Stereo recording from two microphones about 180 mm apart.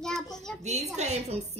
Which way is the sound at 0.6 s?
40° right (ahead or behind).